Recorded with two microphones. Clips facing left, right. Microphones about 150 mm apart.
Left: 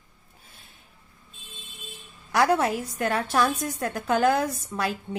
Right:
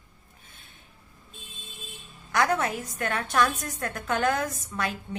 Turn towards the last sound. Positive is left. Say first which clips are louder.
# left 3 dB
turn(degrees=35)  # may be behind; listen again after turning